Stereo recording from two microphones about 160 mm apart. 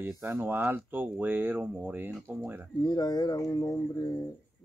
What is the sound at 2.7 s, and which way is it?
Speech, 25° left (ahead or behind).